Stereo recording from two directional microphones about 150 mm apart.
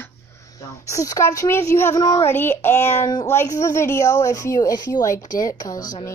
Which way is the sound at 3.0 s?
25° left (ahead or behind).